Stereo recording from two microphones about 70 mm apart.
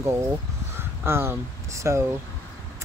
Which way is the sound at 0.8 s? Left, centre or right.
Right.